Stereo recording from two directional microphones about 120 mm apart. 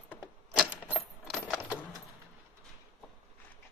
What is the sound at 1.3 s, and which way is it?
Coin, 5° left (ahead or behind).